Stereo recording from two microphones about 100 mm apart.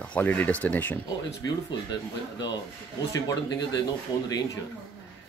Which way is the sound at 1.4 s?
40° left (ahead or behind).